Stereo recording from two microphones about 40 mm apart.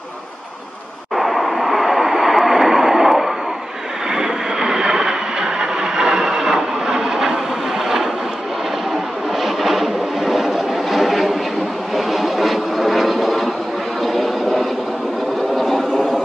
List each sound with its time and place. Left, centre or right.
1.1 s vehicle: centre
9.4 s vehicle: centre